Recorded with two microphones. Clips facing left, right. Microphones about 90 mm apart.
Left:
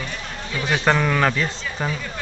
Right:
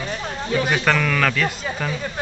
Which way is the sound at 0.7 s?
20° left (ahead or behind).